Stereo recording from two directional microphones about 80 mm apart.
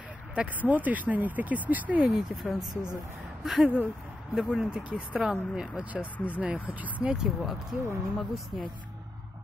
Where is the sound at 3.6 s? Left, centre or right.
Right.